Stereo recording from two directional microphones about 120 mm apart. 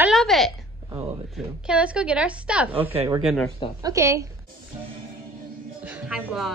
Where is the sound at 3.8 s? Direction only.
25° right (ahead or behind).